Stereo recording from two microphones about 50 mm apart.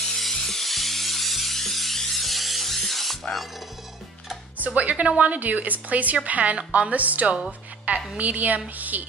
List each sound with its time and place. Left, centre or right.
0.0 s music: centre
4.6 s a woman's voice: right